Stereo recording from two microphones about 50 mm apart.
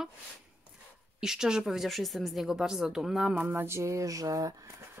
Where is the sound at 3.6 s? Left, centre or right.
Right.